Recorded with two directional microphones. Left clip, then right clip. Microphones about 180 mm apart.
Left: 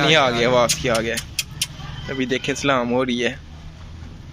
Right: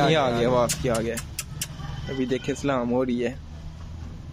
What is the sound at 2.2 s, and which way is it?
Speech, 5° right (ahead or behind).